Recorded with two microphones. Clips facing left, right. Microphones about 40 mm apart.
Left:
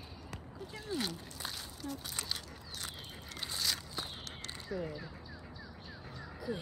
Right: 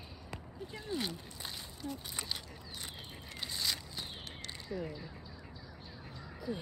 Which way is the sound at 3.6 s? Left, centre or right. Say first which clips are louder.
Left 1 dB; centre.